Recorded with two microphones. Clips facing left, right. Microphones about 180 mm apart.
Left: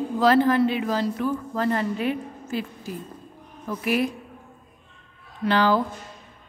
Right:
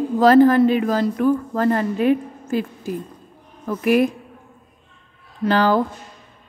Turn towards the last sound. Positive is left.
turn(degrees=-45)  # may be behind; listen again after turning